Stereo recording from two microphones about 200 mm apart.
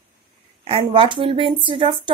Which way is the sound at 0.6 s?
25° right (ahead or behind).